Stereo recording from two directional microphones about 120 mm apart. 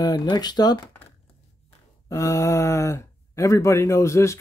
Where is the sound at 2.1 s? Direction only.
25° left (ahead or behind).